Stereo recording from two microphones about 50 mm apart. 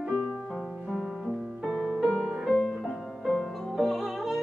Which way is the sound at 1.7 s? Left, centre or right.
Centre.